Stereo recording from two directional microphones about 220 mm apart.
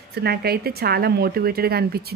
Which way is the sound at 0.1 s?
45° right (ahead or behind).